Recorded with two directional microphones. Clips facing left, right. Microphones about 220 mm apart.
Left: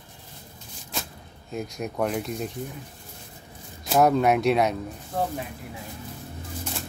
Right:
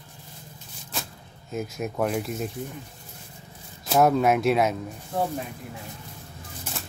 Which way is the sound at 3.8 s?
Centre (ahead or behind).